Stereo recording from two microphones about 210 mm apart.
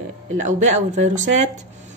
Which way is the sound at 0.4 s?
35° right (ahead or behind).